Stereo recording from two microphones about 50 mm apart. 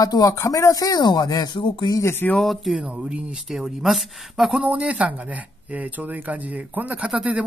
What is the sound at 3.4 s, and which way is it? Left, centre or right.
Speech, centre.